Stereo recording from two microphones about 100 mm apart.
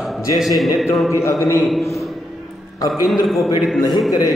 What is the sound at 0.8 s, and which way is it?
Speech, 30° left (ahead or behind).